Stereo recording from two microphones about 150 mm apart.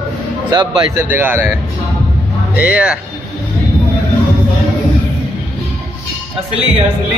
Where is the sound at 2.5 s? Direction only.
10° right (ahead or behind).